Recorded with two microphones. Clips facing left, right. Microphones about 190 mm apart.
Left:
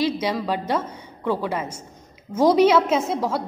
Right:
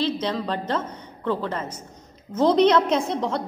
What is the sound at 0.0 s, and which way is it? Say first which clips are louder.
A woman's voice: left 2 dB; 10° left (ahead or behind).